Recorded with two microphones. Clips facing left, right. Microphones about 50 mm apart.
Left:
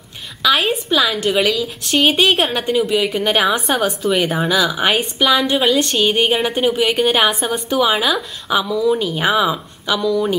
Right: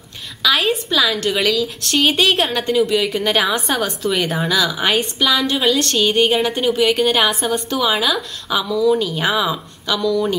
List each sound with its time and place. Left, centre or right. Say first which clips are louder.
0.4 s a woman's voice: left 1 dB; centre